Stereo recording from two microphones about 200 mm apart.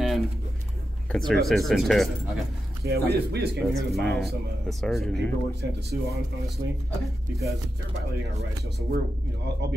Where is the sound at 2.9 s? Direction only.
55° right (ahead or behind).